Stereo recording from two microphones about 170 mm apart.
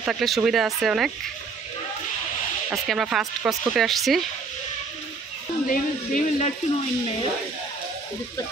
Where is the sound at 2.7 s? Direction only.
Centre (ahead or behind).